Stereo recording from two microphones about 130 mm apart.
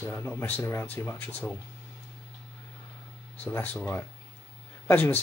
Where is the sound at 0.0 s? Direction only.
15° left (ahead or behind).